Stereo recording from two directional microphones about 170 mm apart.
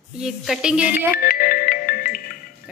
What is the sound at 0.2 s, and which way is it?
Speech, centre (ahead or behind).